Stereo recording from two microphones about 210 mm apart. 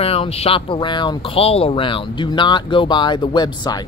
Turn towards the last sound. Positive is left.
turn(degrees=20)  # may be behind; listen again after turning